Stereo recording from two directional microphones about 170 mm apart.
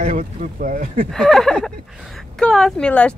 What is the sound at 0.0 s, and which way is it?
Speech, 50° right (ahead or behind).